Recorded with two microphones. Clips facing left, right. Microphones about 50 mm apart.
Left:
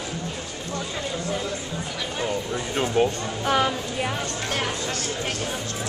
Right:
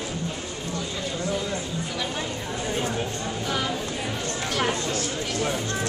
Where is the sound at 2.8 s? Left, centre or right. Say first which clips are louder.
Left 11 dB; left.